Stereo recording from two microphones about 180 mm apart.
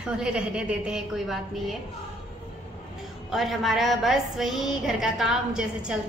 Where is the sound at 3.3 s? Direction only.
Centre (ahead or behind).